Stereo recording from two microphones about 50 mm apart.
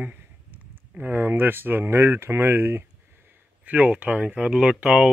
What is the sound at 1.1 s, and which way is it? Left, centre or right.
Speech, right.